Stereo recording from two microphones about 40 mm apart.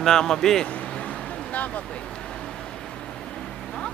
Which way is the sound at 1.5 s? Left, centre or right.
Left.